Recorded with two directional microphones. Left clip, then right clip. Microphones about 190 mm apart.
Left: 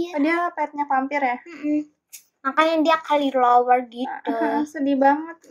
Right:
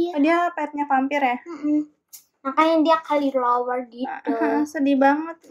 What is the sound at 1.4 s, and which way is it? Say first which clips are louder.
A child's voice: right 1 dB; 35° left (ahead or behind).